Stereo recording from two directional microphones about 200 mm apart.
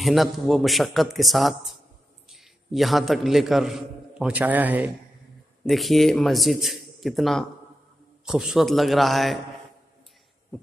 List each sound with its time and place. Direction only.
0.0 s a man's voice: centre (ahead or behind)